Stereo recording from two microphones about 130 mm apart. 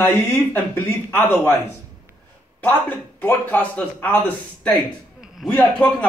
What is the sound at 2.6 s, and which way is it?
A man's voice, 10° left (ahead or behind).